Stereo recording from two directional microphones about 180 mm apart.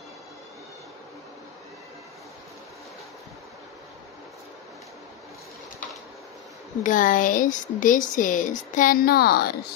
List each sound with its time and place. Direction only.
6.8 s speech: 50° left (ahead or behind)